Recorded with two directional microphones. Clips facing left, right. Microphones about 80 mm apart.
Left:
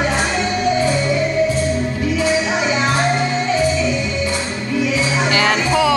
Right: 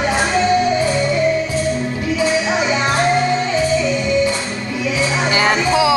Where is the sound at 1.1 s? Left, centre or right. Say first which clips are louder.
Even; centre.